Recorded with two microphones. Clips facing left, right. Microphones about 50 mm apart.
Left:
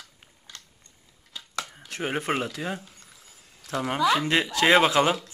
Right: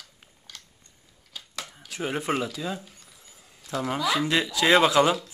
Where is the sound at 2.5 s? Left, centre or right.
Left.